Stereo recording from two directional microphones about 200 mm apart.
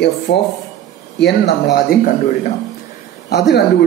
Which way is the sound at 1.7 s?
40° left (ahead or behind).